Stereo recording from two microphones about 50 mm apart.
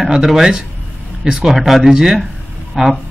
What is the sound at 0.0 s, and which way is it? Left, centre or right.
Speech, centre.